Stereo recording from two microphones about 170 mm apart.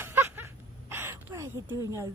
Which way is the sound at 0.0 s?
10° right (ahead or behind).